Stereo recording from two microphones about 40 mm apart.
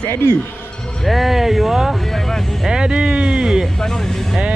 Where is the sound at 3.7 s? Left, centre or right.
Centre.